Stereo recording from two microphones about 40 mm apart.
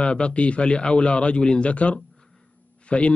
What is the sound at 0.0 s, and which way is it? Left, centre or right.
A man's voice, left.